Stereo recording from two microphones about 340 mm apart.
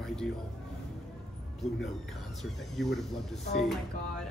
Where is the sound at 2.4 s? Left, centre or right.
Centre.